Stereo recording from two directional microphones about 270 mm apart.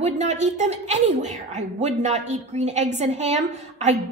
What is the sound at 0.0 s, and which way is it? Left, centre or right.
A woman's voice, right.